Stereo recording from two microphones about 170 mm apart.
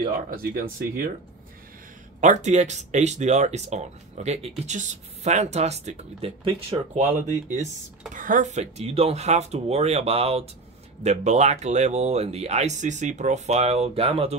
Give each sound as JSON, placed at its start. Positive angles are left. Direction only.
{"t": 0.4, "sound": "speech", "side_deg": -60}
{"t": 2.1, "sound": "speech", "side_deg": -45}
{"t": 6.7, "sound": "speech", "side_deg": -25}
{"t": 7.1, "sound": "speech", "side_deg": -45}